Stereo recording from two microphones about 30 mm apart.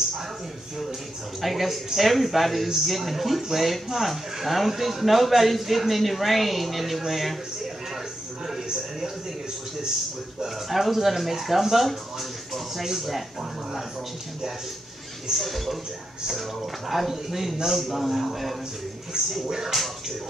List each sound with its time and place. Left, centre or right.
1.4 s a man's voice: centre
10.4 s a man's voice: centre
15.3 s a man's voice: centre
16.9 s a man's voice: centre
19.1 s speech: right
19.7 s a man's voice: centre